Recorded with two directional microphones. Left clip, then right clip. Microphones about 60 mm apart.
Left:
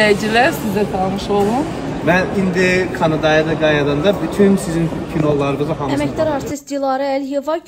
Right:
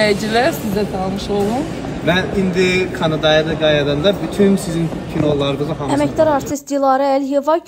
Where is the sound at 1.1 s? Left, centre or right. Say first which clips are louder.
Left 3 dB; left.